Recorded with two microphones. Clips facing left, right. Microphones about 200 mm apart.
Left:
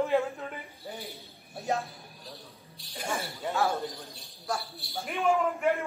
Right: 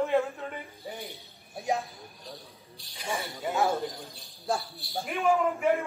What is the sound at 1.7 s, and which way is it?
Speech, 15° right (ahead or behind).